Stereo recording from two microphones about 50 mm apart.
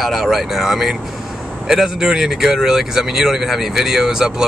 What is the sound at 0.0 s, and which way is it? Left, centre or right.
Speech, centre.